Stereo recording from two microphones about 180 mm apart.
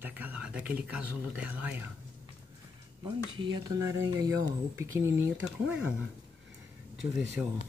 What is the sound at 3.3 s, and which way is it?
Speech, 20° right (ahead or behind).